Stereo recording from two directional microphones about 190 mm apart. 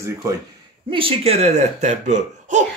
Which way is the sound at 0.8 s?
30° right (ahead or behind).